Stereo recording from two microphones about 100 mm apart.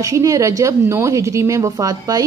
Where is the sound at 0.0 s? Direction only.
35° right (ahead or behind).